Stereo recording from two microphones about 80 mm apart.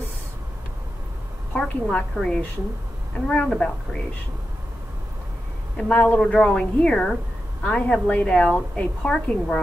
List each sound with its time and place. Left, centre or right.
1.5 s a woman's voice: centre
3.4 s a woman's voice: centre
5.8 s a woman's voice: centre